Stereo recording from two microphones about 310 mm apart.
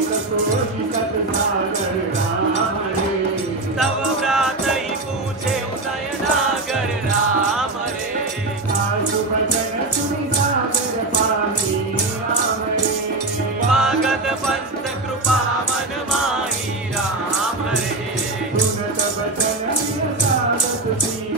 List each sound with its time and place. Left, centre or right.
3.8 s music: centre
13.7 s music: centre